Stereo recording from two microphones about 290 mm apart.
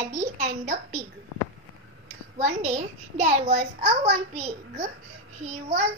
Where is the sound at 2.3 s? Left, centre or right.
Right.